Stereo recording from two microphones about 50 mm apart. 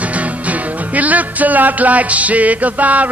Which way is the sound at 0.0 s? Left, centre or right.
Right.